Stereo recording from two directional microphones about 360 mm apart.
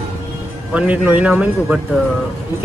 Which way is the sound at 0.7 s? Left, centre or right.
Centre.